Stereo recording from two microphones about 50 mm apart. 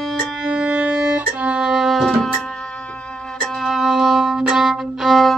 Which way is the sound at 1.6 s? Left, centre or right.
Centre.